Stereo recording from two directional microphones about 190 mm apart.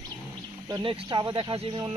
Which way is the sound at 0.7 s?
25° right (ahead or behind).